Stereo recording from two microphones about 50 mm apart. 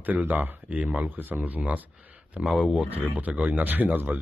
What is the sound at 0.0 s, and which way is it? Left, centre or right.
Speech, right.